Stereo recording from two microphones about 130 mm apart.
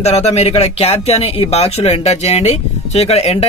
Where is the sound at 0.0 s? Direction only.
55° left (ahead or behind).